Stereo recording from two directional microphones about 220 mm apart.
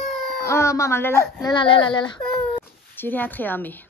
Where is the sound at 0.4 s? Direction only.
10° left (ahead or behind).